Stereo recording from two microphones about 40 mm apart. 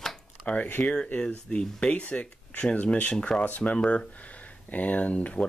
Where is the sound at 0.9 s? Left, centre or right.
Left.